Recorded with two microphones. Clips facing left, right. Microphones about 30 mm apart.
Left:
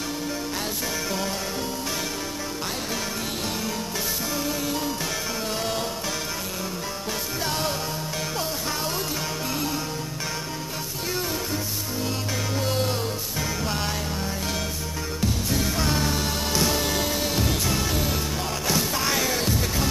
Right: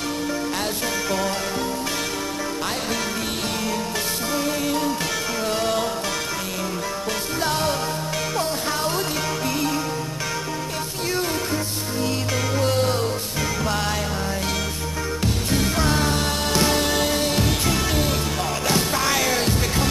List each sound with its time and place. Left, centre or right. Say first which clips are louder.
4.5 s music: right 4 dB; right
7.4 s music: right 5 dB; right
11.1 s music: right 4 dB; centre
15.5 s music: right 5 dB; right